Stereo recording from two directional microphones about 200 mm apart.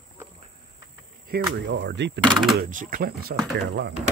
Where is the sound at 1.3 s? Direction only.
60° right (ahead or behind).